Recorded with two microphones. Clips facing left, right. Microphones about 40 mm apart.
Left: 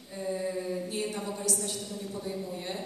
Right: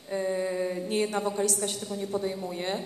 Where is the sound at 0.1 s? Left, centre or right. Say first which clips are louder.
Right 4 dB; right.